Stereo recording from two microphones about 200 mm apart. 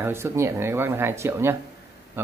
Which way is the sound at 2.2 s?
10° right (ahead or behind).